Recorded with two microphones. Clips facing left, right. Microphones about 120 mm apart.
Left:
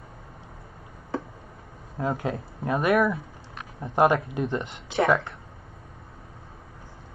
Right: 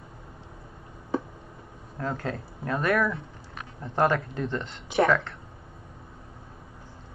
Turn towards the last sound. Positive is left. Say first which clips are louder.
# even
turn(degrees=20)  # may be behind; listen again after turning